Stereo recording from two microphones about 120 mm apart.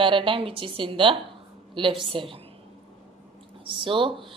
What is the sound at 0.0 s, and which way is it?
A woman's voice, 45° right (ahead or behind).